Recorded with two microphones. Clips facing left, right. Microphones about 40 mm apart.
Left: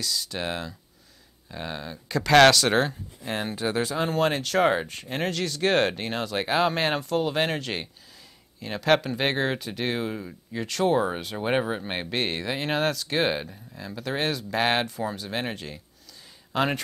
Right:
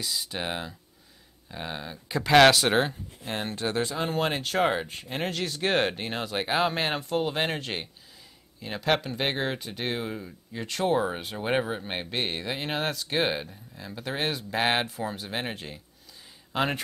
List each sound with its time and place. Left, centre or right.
0.0 s speech: right
3.3 s speech: centre
4.1 s speech: centre
10.1 s speech: centre
10.6 s speech: centre